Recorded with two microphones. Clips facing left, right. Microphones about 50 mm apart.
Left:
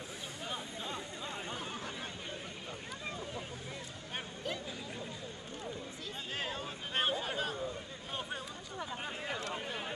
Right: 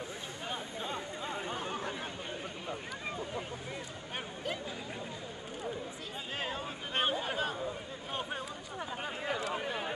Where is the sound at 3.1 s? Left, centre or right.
Centre.